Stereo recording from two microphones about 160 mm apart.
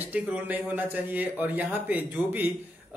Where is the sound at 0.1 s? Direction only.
10° right (ahead or behind).